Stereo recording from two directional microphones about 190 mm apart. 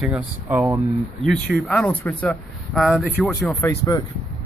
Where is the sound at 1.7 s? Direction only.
5° left (ahead or behind).